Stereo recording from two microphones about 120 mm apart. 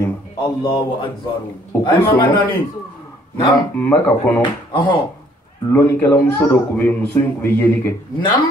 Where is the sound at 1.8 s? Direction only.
40° left (ahead or behind).